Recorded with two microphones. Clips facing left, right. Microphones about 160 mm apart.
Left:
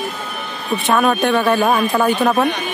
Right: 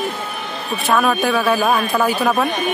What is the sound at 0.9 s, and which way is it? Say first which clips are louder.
A woman's voice: left 1 dB; centre (ahead or behind).